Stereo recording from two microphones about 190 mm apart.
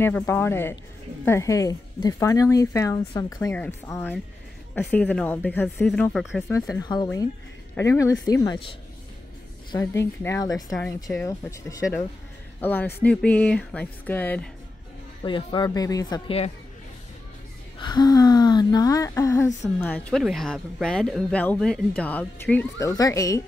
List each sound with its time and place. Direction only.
0.0 s speech: 10° left (ahead or behind)
6.7 s speech: 20° left (ahead or behind)
15.2 s speech: 25° left (ahead or behind)
16.3 s a woman's voice: 30° left (ahead or behind)
17.7 s speech: 20° left (ahead or behind)
19.8 s speech: 5° left (ahead or behind)